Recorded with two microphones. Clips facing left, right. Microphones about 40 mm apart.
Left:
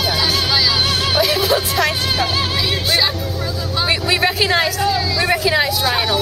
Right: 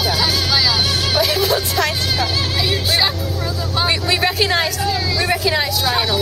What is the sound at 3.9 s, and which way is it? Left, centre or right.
Speech, centre.